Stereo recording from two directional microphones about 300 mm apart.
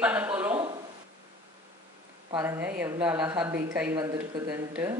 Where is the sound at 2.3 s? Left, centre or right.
Centre.